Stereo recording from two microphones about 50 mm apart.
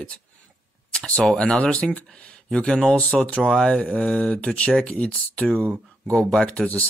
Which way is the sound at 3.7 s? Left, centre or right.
Left.